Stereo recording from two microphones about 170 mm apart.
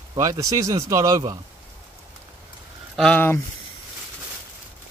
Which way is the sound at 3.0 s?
10° left (ahead or behind).